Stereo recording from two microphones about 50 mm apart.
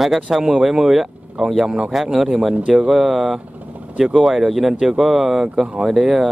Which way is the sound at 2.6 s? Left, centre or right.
Right.